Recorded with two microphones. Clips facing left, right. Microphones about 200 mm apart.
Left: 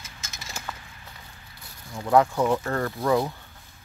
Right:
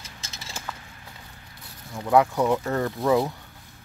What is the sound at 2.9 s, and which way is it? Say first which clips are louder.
Speech: right 2 dB; 5° right (ahead or behind).